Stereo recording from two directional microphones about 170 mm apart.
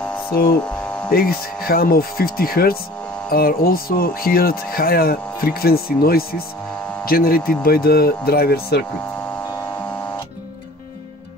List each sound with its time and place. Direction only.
0.3 s speech: 65° left (ahead or behind)
0.7 s electric shaver: 5° left (ahead or behind)
1.1 s speech: 65° left (ahead or behind)